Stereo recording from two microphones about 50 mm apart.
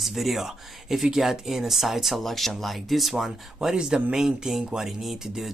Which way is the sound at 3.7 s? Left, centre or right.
Centre.